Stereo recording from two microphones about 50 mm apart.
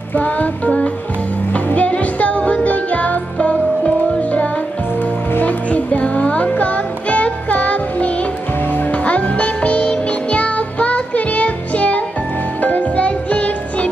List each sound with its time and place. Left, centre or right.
0.1 s music: left